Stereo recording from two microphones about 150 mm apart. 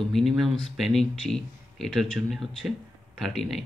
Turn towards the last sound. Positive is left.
turn(degrees=5)  # may be behind; listen again after turning